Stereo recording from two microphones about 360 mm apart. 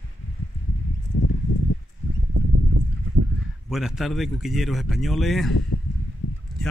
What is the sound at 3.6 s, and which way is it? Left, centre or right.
Speech, centre.